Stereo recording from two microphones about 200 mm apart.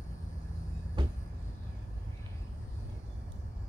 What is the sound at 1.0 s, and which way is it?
Vehicle, 25° right (ahead or behind).